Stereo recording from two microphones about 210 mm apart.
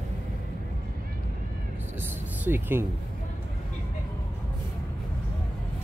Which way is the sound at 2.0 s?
10° right (ahead or behind).